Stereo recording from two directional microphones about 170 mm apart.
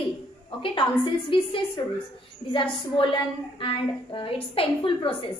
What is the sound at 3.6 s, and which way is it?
A woman's voice, 30° left (ahead or behind).